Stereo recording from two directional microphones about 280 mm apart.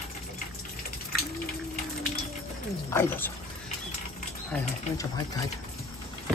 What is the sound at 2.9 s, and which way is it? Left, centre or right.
Speech, centre.